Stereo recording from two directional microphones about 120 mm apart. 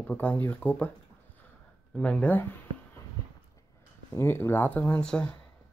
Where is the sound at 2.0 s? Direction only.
10° left (ahead or behind).